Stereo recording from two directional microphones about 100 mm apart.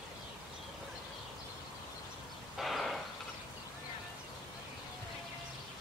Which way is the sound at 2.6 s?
Centre (ahead or behind).